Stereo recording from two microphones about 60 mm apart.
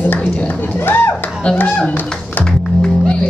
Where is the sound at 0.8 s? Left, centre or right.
Left.